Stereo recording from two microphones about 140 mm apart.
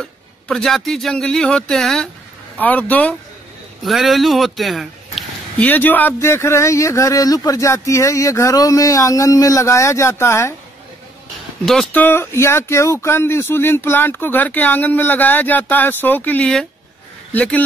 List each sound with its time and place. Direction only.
0.0 s a man's voice: 5° left (ahead or behind)
3.8 s speech: centre (ahead or behind)
5.6 s speech: 15° left (ahead or behind)
11.6 s speech: 5° left (ahead or behind)